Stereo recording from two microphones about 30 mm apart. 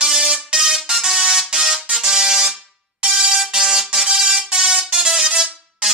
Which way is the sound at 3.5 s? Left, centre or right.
Centre.